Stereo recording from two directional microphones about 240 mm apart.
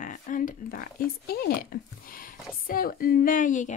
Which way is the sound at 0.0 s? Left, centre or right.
Left.